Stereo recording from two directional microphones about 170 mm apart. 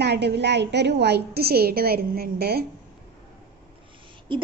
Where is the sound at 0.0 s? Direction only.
80° right.